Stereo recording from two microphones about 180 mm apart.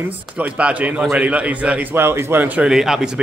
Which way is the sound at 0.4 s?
5° right (ahead or behind).